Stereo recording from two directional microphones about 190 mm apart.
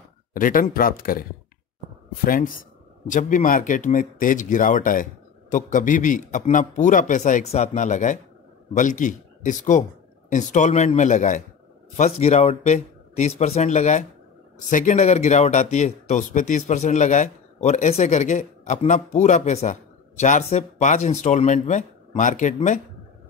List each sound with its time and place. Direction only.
0.3 s speech: 45° left (ahead or behind)
2.2 s speech: 45° left (ahead or behind)